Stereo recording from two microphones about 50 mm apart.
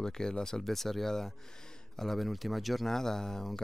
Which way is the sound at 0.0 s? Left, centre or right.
Centre.